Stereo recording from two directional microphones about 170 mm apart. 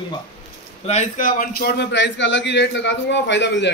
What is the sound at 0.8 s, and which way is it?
A man's voice, 45° left (ahead or behind).